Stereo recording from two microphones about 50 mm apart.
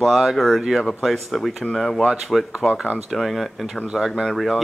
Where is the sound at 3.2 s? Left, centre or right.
Centre.